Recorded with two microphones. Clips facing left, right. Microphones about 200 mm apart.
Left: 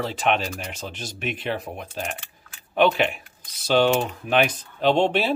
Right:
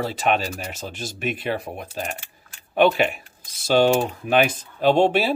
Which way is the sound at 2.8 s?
45° right (ahead or behind).